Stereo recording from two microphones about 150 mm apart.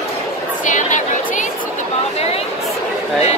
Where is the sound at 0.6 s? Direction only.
55° left (ahead or behind).